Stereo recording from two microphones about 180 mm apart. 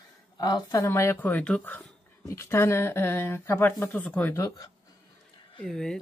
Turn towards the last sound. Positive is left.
turn(degrees=5)  # may be behind; listen again after turning